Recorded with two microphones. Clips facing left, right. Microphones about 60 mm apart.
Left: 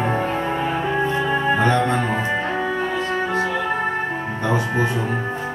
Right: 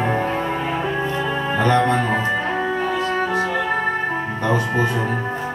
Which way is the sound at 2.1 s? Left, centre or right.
Centre.